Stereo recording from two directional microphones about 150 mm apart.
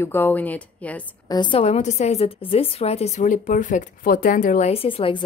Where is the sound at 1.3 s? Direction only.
30° left (ahead or behind).